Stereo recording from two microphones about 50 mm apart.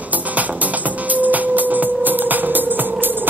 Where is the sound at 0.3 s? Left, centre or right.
Right.